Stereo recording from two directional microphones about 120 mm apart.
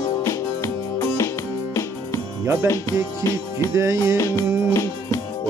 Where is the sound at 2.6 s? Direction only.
25° left (ahead or behind).